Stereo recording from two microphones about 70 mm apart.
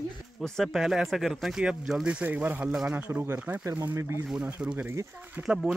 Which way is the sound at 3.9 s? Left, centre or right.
Right.